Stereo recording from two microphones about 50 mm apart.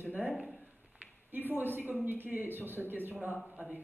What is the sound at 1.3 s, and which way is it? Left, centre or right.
A woman's voice, right.